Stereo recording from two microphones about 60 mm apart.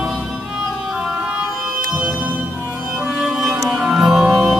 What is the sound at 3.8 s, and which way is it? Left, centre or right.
Music, centre.